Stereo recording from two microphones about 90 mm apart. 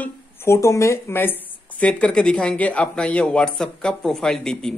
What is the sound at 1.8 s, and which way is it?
Speech, 10° left (ahead or behind).